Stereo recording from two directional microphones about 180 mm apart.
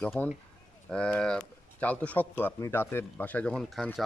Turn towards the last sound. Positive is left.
turn(degrees=0)  # may be behind; listen again after turning